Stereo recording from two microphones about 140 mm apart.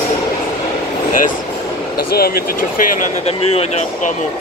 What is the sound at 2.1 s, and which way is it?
Speech, 90° left.